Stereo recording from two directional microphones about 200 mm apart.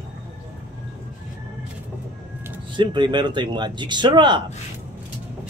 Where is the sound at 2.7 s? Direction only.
25° right (ahead or behind).